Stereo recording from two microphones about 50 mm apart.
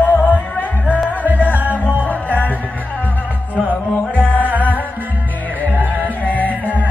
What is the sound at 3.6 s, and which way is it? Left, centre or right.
Music, left.